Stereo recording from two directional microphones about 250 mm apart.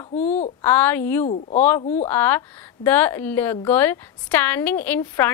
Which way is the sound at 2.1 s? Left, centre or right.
Centre.